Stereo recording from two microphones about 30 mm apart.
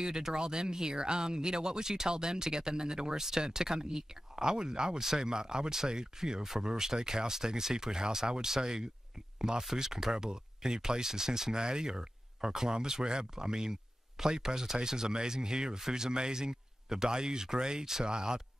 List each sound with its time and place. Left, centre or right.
0.0 s speech: right